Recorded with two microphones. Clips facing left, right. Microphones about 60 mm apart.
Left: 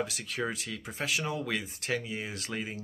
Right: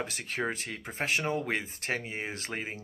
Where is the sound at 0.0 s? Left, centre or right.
Right.